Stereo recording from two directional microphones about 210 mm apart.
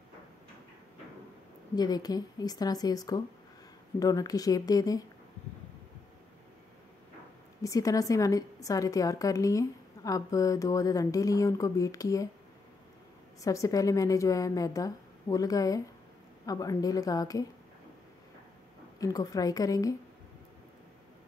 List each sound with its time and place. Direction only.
1.8 s a woman's voice: 20° left (ahead or behind)
7.6 s a woman's voice: 15° left (ahead or behind)
13.4 s a woman's voice: 15° left (ahead or behind)
18.9 s a woman's voice: 15° left (ahead or behind)